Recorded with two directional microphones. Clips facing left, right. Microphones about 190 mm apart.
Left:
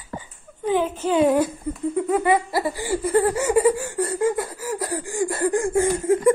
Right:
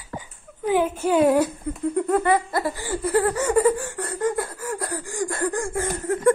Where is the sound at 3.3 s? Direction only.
25° left (ahead or behind).